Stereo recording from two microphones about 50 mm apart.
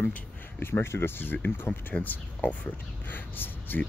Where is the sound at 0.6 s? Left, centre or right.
Left.